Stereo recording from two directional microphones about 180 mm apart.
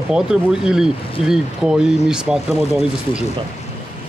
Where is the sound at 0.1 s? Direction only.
5° right (ahead or behind).